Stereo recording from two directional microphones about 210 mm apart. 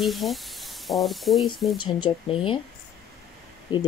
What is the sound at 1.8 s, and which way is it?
Speech, 20° left (ahead or behind).